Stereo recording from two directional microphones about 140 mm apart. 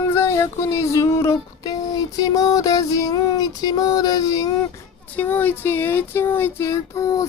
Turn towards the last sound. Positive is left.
turn(degrees=25)  # may be behind; listen again after turning